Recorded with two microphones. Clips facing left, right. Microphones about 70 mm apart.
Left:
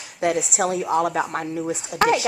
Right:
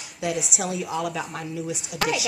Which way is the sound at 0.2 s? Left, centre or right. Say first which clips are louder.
Left 6 dB; left.